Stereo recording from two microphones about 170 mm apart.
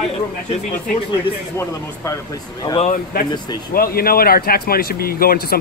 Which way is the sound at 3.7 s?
60° left (ahead or behind).